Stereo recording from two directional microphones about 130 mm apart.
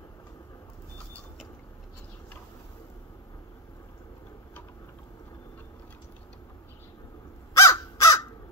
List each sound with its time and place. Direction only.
7.5 s crow: 20° left (ahead or behind)